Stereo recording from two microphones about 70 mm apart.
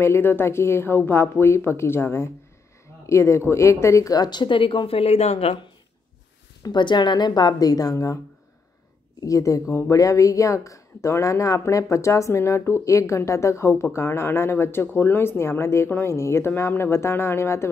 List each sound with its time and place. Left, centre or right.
0.0 s a woman's voice: left
6.6 s a woman's voice: left
9.2 s a woman's voice: left